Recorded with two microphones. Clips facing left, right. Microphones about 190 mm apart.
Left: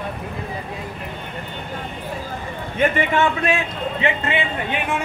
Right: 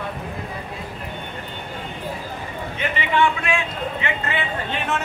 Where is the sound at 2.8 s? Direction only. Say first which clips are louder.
Left 3 dB; 45° left (ahead or behind).